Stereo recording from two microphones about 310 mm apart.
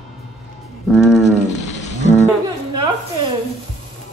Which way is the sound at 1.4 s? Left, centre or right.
Left.